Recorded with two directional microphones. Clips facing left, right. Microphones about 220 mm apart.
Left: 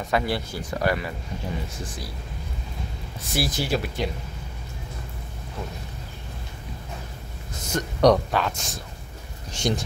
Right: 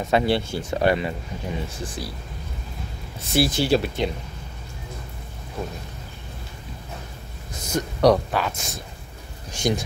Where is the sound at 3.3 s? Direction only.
30° right (ahead or behind).